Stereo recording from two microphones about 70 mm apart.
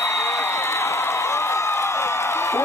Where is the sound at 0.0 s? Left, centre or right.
Left.